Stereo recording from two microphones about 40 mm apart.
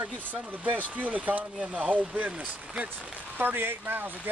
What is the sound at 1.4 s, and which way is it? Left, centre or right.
Speech, right.